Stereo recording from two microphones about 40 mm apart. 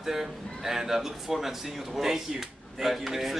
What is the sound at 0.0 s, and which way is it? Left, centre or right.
Speech, centre.